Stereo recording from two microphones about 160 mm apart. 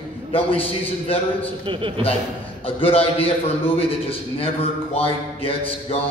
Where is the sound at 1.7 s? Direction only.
35° right (ahead or behind).